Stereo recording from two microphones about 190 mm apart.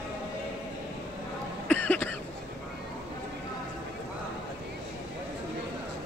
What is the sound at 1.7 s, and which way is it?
Cough, 10° left (ahead or behind).